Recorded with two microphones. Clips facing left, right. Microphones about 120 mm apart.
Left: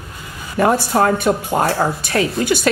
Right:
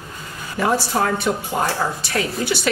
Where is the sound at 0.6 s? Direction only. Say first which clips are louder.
Left 5 dB; 55° left (ahead or behind).